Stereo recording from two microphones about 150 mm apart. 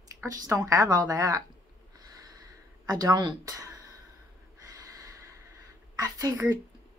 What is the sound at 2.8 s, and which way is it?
Speech, 25° right (ahead or behind).